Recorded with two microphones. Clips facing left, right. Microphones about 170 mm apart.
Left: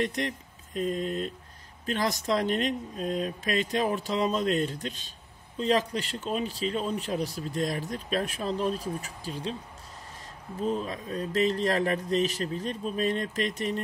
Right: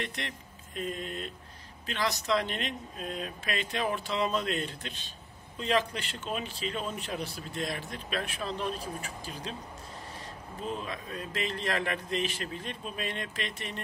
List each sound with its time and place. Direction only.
0.0 s speech: 40° left (ahead or behind)
10.7 s speech: 40° left (ahead or behind)